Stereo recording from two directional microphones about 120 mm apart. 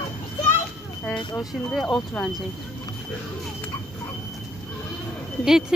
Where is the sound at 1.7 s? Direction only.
5° left (ahead or behind).